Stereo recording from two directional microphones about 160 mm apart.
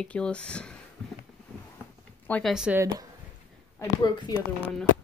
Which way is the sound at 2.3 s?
10° left (ahead or behind).